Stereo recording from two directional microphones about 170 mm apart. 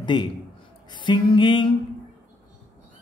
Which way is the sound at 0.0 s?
30° left (ahead or behind).